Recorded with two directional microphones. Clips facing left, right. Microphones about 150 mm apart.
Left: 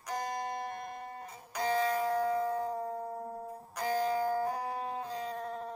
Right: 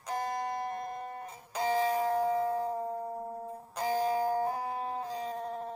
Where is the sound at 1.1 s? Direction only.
25° right (ahead or behind).